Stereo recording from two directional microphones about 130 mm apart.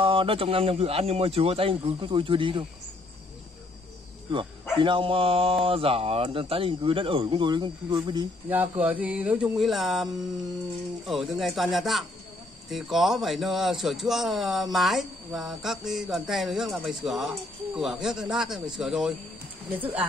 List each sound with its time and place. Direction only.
0.0 s speech: 40° right (ahead or behind)
4.3 s speech: 40° right (ahead or behind)
8.5 s speech: 15° right (ahead or behind)
11.1 s a man's voice: centre (ahead or behind)